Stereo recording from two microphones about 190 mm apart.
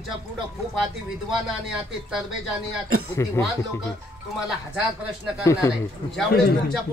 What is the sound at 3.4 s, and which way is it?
Speech, 15° left (ahead or behind).